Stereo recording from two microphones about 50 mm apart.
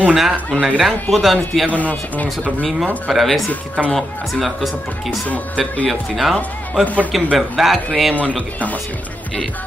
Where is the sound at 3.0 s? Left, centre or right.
Centre.